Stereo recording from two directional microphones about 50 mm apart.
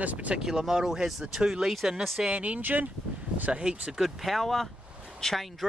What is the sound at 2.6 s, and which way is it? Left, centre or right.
Speech, right.